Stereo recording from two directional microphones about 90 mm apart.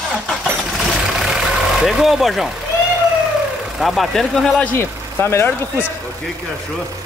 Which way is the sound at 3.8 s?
Centre (ahead or behind).